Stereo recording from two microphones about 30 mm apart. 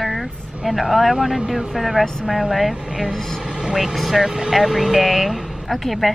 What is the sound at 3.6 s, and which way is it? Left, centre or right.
A woman's voice, right.